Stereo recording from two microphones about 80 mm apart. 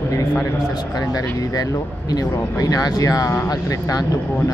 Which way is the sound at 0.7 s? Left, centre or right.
Left.